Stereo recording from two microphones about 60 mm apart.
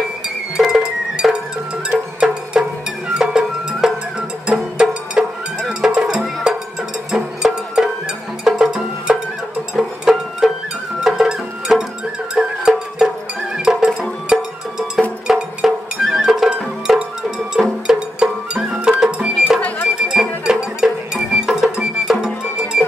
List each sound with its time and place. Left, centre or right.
0.6 s music: centre